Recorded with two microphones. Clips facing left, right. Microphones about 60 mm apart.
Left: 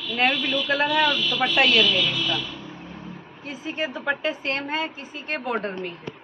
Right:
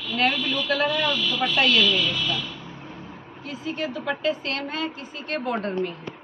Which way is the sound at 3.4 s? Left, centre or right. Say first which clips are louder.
Even; left.